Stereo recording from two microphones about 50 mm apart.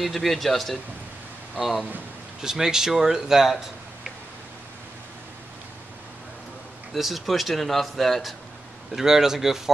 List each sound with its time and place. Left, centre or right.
0.0 s a man's voice: centre
2.4 s speech: centre
6.9 s a man's voice: centre
8.9 s speech: centre